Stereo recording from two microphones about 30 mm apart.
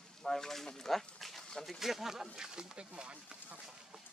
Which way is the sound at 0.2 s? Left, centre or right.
Centre.